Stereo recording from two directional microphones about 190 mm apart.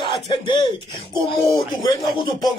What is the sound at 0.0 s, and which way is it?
Speech, 25° left (ahead or behind).